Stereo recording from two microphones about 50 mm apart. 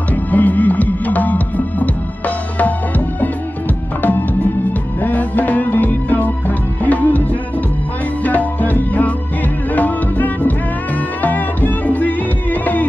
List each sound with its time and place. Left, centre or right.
0.1 s music: left
4.0 s music: left